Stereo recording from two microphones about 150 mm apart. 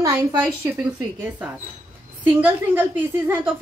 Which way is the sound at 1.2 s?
10° right (ahead or behind).